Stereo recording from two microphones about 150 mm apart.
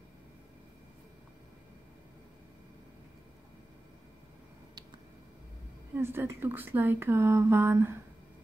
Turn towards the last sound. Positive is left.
turn(degrees=-15)  # may be behind; listen again after turning